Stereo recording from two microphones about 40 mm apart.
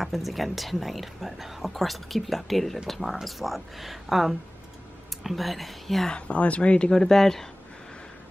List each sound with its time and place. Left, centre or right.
0.0 s speech: centre
6.0 s speech: left
6.9 s speech: centre